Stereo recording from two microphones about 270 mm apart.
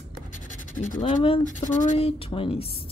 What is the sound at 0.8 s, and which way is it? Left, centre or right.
Speech, left.